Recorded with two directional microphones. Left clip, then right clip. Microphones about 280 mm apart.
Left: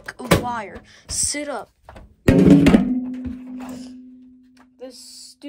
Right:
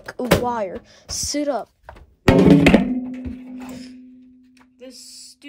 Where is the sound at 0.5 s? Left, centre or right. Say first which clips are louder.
Right 4 dB; right.